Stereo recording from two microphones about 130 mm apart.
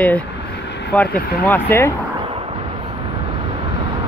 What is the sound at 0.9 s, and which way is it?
Speech, 10° left (ahead or behind).